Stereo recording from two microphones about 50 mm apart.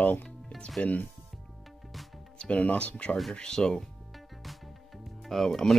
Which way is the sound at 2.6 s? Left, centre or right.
Left.